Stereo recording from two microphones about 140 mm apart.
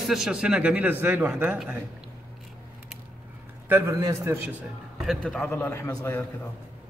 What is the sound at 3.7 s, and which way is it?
Speech, 20° right (ahead or behind).